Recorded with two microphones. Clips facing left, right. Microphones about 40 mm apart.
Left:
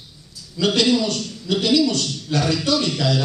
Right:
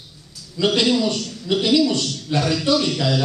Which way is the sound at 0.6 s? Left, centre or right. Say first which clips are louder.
Even; centre.